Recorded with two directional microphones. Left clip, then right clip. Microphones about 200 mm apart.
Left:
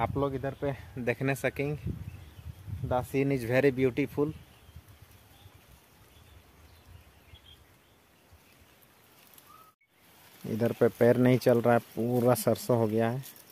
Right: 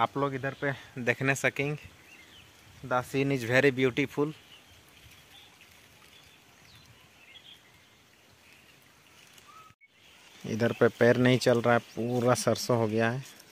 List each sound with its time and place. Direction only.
0.2 s speech: centre (ahead or behind)
2.9 s speech: 5° left (ahead or behind)
10.4 s speech: 5° left (ahead or behind)